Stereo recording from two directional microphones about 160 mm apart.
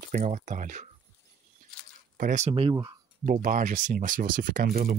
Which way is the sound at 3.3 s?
55° right (ahead or behind).